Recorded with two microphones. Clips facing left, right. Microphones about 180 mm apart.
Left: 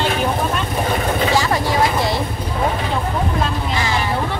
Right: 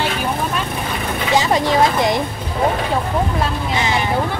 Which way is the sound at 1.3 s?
20° right (ahead or behind).